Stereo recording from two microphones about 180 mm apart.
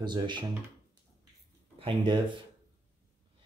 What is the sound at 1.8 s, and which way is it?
Speech, 25° right (ahead or behind).